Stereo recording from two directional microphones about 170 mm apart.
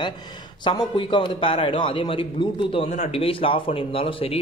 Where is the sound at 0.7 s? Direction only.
30° left (ahead or behind).